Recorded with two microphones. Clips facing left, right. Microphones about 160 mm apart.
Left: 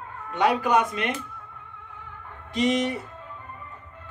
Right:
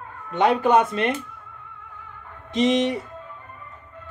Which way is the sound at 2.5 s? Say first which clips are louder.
Right 3 dB; 25° right (ahead or behind).